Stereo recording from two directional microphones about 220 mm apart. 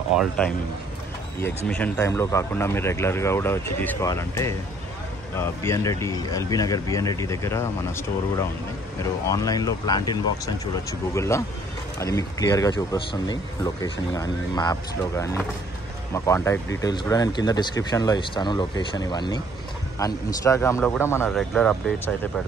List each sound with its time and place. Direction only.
0.1 s speech: centre (ahead or behind)
1.7 s speech: 10° left (ahead or behind)
5.6 s speech: 10° left (ahead or behind)